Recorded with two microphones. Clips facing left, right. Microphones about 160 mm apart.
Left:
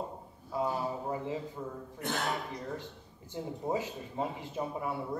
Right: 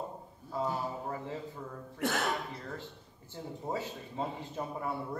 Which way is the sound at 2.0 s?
90° right.